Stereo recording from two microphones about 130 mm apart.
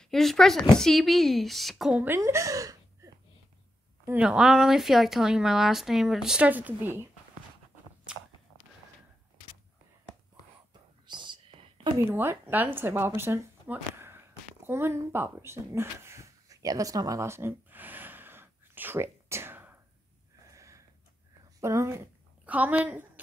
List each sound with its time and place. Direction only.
0.0 s speech: centre (ahead or behind)
2.0 s a woman's voice: 20° right (ahead or behind)
4.0 s speech: 10° right (ahead or behind)
11.1 s whispering: 35° right (ahead or behind)
12.1 s a sound: 15° right (ahead or behind)
21.5 s speech: 20° right (ahead or behind)
22.5 s a woman's voice: 10° right (ahead or behind)